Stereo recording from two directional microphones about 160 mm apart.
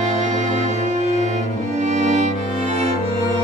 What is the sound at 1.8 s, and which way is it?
Music, 45° right (ahead or behind).